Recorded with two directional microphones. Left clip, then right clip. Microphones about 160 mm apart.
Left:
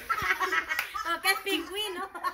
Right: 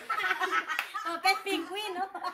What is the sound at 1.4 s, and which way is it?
Speech, 60° right (ahead or behind).